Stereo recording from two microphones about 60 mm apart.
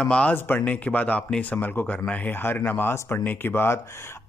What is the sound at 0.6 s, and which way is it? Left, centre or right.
Speech, left.